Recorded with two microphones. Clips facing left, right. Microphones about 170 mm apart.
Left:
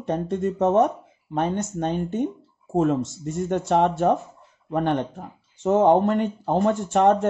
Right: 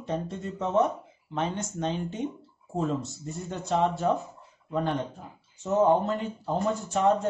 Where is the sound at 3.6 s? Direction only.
65° left (ahead or behind).